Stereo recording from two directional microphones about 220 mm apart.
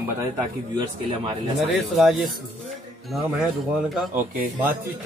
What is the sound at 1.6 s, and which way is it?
A man's voice, centre (ahead or behind).